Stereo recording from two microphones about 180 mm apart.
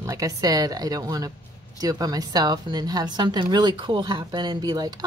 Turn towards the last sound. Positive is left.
turn(degrees=-20)  # may be behind; listen again after turning